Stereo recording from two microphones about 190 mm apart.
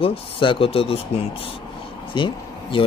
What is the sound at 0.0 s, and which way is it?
Speech, 30° left (ahead or behind).